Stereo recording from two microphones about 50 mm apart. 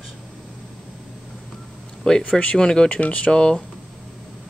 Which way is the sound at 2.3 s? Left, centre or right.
Centre.